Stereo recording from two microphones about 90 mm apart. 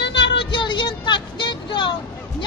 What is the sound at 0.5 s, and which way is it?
Vehicle, 60° left (ahead or behind).